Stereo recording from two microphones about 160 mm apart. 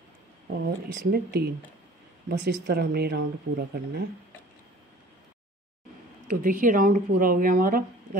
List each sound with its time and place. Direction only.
1.1 s speech: 80° right
2.2 s speech: 90° right
6.2 s speech: 55° right (ahead or behind)